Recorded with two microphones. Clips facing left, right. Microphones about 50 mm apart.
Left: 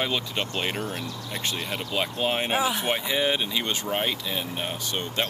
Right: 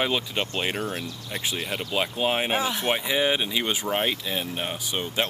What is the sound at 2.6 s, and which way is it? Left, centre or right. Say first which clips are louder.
Speech: left 1 dB; centre.